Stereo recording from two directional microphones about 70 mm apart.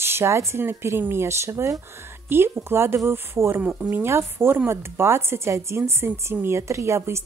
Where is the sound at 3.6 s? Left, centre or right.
Centre.